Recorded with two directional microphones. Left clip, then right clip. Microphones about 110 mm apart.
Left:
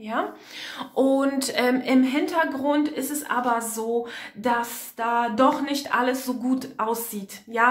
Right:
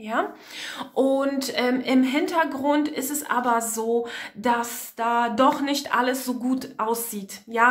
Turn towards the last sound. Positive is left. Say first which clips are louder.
# right 1 dB
turn(degrees=-25)  # may be behind; listen again after turning